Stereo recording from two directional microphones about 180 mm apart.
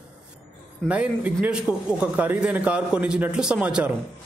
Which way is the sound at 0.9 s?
5° right (ahead or behind).